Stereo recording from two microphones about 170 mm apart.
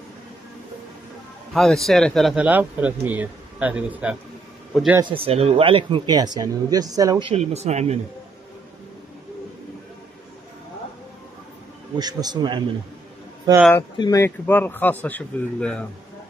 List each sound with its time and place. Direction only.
1.5 s speech: centre (ahead or behind)
5.0 s speech: 35° right (ahead or behind)
7.2 s speech: 40° right (ahead or behind)
12.0 s speech: 25° right (ahead or behind)
13.9 s speech: 25° left (ahead or behind)
14.2 s speech: 10° left (ahead or behind)